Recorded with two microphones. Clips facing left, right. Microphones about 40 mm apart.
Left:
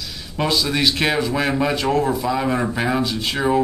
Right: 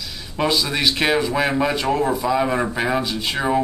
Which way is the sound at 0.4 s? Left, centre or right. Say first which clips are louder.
Even; centre.